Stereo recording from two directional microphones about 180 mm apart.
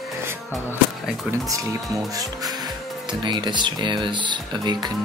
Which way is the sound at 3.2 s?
25° right (ahead or behind).